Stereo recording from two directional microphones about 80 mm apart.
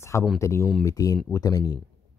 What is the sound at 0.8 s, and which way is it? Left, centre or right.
Speech, left.